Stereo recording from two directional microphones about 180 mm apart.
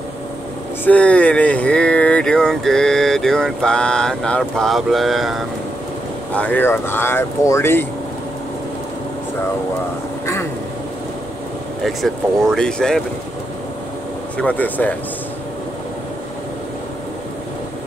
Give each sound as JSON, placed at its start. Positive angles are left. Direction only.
{"t": 0.8, "sound": "speech", "side_deg": 5}
{"t": 11.8, "sound": "speech", "side_deg": 0}
{"t": 14.3, "sound": "speech", "side_deg": 10}